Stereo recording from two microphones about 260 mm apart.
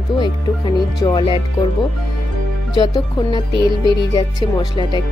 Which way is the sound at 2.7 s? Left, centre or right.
Centre.